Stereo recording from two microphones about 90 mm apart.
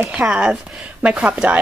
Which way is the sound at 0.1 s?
15° right (ahead or behind).